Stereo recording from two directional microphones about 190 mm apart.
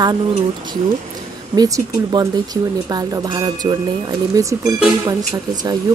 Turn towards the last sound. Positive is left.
turn(degrees=-20)  # may be behind; listen again after turning